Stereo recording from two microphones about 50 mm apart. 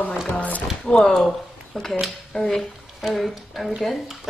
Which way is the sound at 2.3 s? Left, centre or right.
Centre.